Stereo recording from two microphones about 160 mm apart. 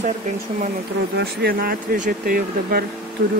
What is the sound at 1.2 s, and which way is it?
Speech, 85° right.